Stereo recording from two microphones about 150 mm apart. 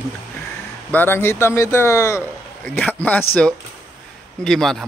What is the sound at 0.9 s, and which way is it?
Speech, 15° left (ahead or behind).